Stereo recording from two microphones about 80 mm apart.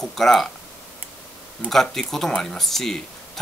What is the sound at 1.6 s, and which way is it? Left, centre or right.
Speech, centre.